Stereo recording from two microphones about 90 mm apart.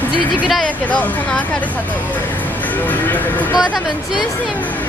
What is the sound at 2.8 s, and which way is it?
Speech, 20° left (ahead or behind).